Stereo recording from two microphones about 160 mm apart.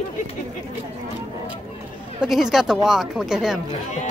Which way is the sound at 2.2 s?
5° right (ahead or behind).